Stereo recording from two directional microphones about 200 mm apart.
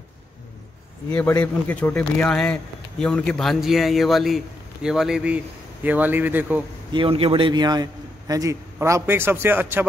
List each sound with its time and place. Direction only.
1.4 s a man's voice: 5° left (ahead or behind); by 6.6 s 10° right (ahead or behind)
6.9 s a man's voice: 25° right (ahead or behind); by 9.8 s 10° right (ahead or behind)